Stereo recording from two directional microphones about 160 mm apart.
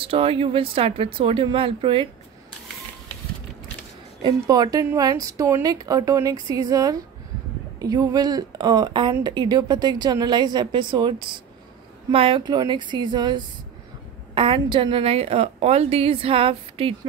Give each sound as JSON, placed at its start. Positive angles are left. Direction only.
{"t": 0.0, "sound": "a woman's voice", "side_deg": -35}
{"t": 4.2, "sound": "a woman's voice", "side_deg": -25}